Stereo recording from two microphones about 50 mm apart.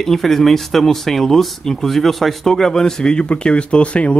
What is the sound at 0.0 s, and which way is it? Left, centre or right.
Speech, centre.